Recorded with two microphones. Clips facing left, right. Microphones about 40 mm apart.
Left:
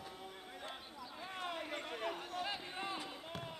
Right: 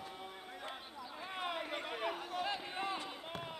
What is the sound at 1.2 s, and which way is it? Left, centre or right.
Run, centre.